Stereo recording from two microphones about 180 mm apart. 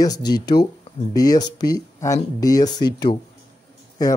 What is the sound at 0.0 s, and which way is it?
A man's voice, 20° left (ahead or behind).